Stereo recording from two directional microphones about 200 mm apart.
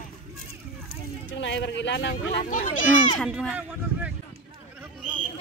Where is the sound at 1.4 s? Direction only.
60° left (ahead or behind).